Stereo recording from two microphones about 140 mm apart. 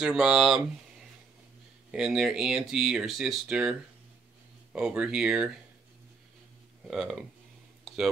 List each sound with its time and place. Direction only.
0.0 s speech: 5° right (ahead or behind)
1.9 s speech: 5° right (ahead or behind)
4.7 s speech: 5° right (ahead or behind)
6.9 s speech: centre (ahead or behind)
7.8 s a sound: centre (ahead or behind)